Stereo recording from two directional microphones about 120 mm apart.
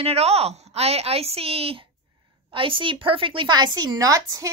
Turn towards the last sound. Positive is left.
turn(degrees=-30)  # may be behind; listen again after turning